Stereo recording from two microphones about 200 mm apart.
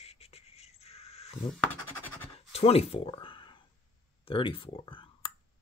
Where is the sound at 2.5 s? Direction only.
30° left (ahead or behind).